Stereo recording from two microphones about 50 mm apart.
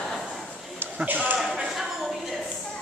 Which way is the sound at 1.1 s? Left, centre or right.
Right.